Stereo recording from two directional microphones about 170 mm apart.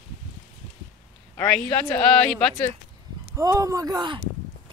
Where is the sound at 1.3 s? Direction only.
10° left (ahead or behind).